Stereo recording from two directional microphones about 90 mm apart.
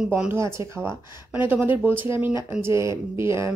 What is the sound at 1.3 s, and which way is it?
Speech, 20° right (ahead or behind).